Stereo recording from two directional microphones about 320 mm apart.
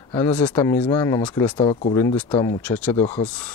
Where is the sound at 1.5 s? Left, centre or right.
Centre.